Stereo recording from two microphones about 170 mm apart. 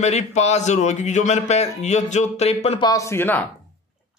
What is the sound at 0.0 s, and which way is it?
A man's voice, 40° left (ahead or behind).